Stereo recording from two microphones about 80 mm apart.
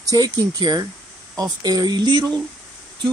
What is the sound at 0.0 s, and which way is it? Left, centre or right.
A man's voice, right.